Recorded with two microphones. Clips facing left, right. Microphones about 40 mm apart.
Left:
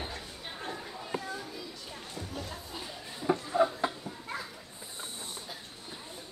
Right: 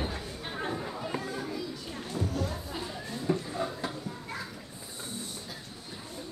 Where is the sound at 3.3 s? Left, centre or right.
Centre.